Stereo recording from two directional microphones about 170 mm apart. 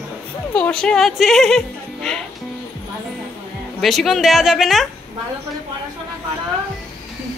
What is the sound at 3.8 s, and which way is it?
Speech, centre (ahead or behind).